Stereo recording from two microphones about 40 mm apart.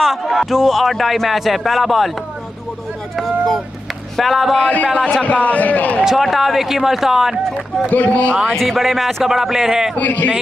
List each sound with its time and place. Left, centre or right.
0.0 s a sound: centre
0.3 s speech: centre
3.2 s a sound: centre
4.2 s speech: centre
4.6 s a man's voice: left
6.0 s speech: centre
7.9 s speech: left
8.5 s speech: centre
9.9 s a man's voice: left